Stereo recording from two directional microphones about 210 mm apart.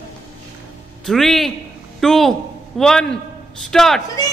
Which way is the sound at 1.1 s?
Centre (ahead or behind).